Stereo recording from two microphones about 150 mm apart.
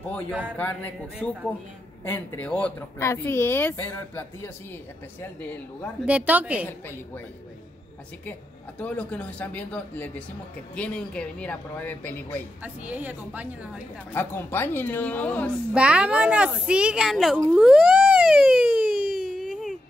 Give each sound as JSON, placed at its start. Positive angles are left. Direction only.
{"t": 1.2, "sound": "speech", "side_deg": 5}
{"t": 6.0, "sound": "a woman's voice", "side_deg": -10}
{"t": 8.3, "sound": "speech", "side_deg": 10}
{"t": 12.6, "sound": "a woman's voice", "side_deg": -10}
{"t": 14.1, "sound": "speech", "side_deg": 15}
{"t": 15.7, "sound": "a woman's voice", "side_deg": -5}
{"t": 18.9, "sound": "a sound", "side_deg": -70}
{"t": 19.3, "sound": "a sound", "side_deg": 5}